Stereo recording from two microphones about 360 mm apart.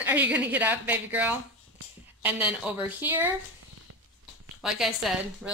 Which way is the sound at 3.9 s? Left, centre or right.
Right.